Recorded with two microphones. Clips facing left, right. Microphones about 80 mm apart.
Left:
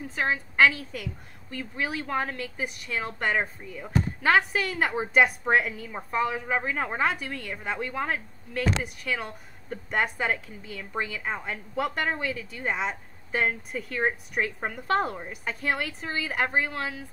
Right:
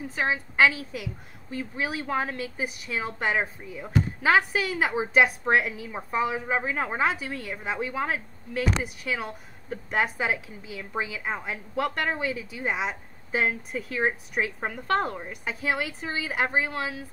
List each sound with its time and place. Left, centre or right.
0.0 s a woman's voice: centre
1.5 s speech: centre
1.9 s a woman's voice: centre